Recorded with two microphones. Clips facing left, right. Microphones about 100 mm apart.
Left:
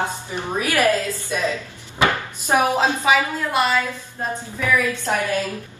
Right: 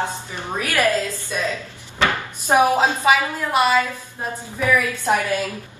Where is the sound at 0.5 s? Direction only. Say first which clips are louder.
Left 1 dB; 15° left (ahead or behind).